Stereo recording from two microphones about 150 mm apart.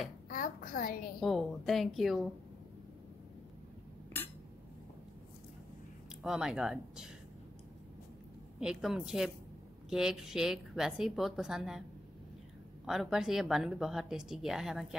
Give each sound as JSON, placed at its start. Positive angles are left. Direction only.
{"t": 0.3, "sound": "a sound", "side_deg": 70}
{"t": 1.2, "sound": "speech", "side_deg": 0}
{"t": 6.2, "sound": "speech", "side_deg": -5}
{"t": 8.5, "sound": "speech", "side_deg": -5}
{"t": 12.8, "sound": "speech", "side_deg": 0}